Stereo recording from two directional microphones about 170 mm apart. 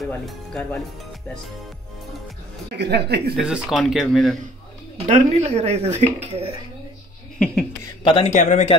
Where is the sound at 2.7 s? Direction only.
80° right.